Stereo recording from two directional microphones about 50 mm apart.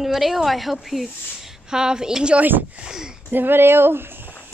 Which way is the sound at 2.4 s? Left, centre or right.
Right.